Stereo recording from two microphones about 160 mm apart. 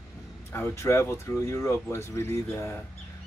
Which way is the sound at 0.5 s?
15° left (ahead or behind).